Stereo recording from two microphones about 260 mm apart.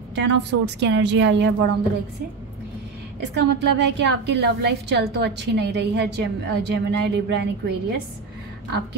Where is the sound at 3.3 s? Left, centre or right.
Right.